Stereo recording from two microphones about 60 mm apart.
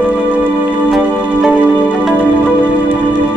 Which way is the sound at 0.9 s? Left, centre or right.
Centre.